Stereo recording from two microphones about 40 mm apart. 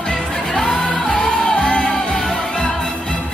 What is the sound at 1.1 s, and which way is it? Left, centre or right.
Music, left.